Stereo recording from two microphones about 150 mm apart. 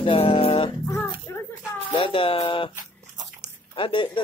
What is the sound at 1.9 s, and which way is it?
Speech, 35° left (ahead or behind).